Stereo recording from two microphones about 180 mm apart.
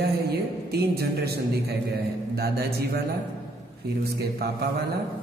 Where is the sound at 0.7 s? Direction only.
60° right (ahead or behind).